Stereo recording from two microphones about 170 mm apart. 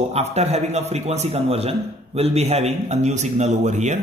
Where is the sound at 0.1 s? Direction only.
40° right (ahead or behind).